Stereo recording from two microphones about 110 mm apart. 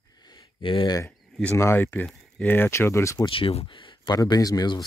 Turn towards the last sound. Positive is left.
turn(degrees=40)  # may be behind; listen again after turning